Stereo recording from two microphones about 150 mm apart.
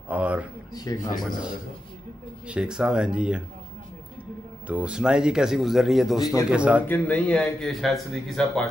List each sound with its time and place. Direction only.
0.1 s a sound: 10° right (ahead or behind)
0.7 s speech: 25° left (ahead or behind)
2.4 s speech: 5° right (ahead or behind)
4.6 s a man's voice: 10° right (ahead or behind)
6.9 s speech: 10° left (ahead or behind)